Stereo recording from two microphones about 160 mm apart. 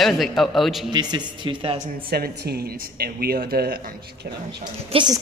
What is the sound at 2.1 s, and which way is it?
Speech, 85° right.